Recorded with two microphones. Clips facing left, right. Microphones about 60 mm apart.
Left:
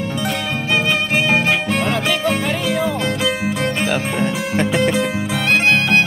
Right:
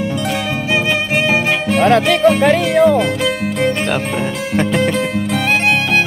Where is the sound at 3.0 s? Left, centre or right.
Centre.